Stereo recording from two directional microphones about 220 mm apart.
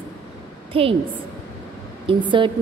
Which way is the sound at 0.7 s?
25° right (ahead or behind).